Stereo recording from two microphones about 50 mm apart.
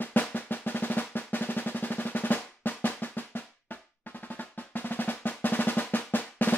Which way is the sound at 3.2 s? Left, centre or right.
Left.